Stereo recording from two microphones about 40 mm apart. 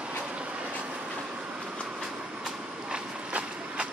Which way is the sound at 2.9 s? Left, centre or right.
Right.